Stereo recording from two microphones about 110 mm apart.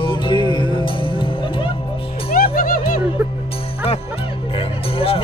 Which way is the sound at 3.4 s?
60° left (ahead or behind).